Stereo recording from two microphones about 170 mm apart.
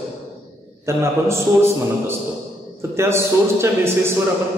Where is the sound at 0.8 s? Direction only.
15° right (ahead or behind).